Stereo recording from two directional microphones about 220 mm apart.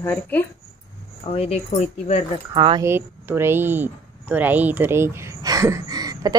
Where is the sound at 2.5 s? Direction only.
20° right (ahead or behind).